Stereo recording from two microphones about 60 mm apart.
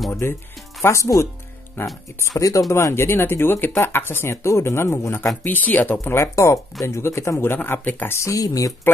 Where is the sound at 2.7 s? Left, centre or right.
Left.